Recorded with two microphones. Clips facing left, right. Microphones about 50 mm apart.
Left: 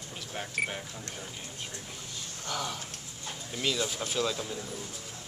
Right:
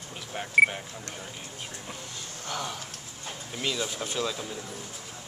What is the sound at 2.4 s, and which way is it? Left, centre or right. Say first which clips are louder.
Speech: right 1 dB; centre.